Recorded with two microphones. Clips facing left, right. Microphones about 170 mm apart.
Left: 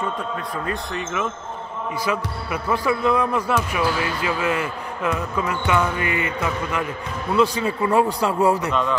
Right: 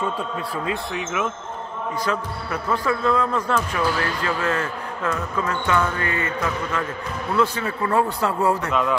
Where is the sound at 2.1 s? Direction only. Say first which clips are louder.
Left 2 dB; 10° left (ahead or behind).